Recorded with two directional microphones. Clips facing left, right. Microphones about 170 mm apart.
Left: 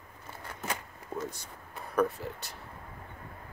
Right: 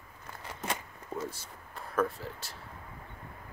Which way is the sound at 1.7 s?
Centre (ahead or behind).